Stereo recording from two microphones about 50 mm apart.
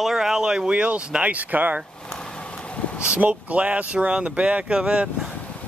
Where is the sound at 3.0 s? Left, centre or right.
Right.